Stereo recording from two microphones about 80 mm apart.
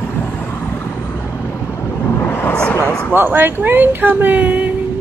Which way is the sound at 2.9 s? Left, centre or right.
Centre.